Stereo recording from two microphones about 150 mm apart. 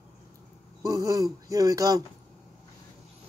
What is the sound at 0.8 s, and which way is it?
Speech, 20° right (ahead or behind).